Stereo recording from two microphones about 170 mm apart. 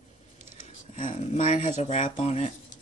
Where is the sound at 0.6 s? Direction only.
50° left (ahead or behind).